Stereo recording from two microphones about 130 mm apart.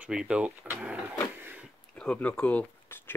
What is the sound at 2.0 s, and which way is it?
Speech, 10° left (ahead or behind).